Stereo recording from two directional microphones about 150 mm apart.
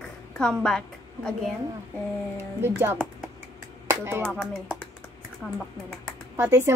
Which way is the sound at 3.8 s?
15° right (ahead or behind).